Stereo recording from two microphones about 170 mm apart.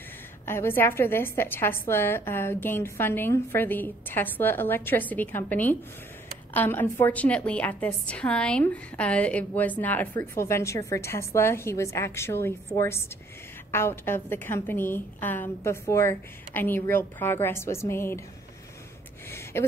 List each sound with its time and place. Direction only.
0.5 s a woman's voice: 15° left (ahead or behind)
19.5 s speech: 15° left (ahead or behind)